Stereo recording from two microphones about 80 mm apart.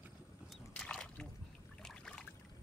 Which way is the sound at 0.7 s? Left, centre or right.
Centre.